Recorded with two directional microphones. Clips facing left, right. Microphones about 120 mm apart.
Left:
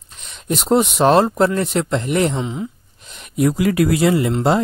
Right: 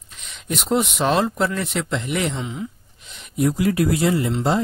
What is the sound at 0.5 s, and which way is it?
Speech, 35° left (ahead or behind).